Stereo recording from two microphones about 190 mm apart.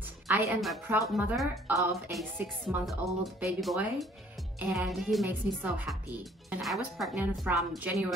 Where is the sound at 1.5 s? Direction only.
15° right (ahead or behind).